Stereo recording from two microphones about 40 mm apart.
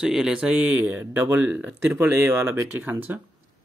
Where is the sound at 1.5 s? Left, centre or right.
Right.